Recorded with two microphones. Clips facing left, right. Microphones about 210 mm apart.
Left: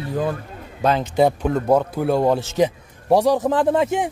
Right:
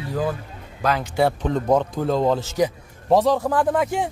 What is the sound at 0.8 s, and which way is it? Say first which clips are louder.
Speech: left 3 dB; 20° left (ahead or behind).